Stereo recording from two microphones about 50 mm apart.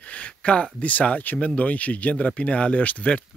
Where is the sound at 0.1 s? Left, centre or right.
Left.